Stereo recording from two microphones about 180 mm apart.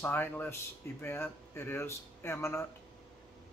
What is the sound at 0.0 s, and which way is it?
A man's voice, 10° left (ahead or behind).